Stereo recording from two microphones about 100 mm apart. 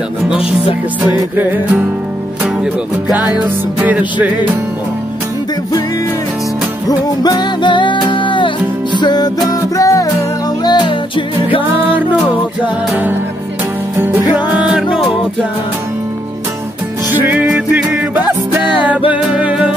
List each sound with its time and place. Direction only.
0.2 s music: 5° right (ahead or behind)
3.1 s music: 40° left (ahead or behind)
3.3 s music: 15° right (ahead or behind)
6.9 s music: 40° left (ahead or behind)
9.0 s music: 45° left (ahead or behind)
10.6 s music: 50° left (ahead or behind)
13.9 s music: 20° right (ahead or behind)
14.3 s music: 10° right (ahead or behind)
17.1 s music: 20° right (ahead or behind)
17.5 s music: 10° right (ahead or behind)